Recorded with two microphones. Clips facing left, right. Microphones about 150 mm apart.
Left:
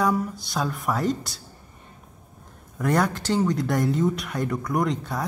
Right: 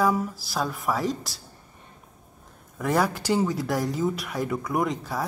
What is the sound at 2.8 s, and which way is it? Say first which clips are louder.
Speech: left 1 dB; centre (ahead or behind).